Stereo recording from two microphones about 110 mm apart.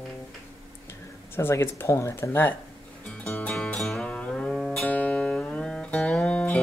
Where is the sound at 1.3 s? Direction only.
20° left (ahead or behind).